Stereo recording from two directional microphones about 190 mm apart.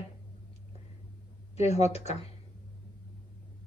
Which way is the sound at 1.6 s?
35° left (ahead or behind).